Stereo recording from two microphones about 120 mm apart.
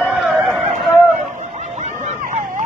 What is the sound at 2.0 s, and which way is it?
Hubbub, 85° right.